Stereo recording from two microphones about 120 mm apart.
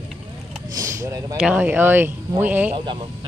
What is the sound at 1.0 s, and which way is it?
Speech, 30° right (ahead or behind).